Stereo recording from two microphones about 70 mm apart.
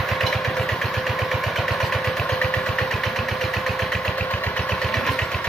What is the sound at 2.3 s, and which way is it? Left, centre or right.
Engine, centre.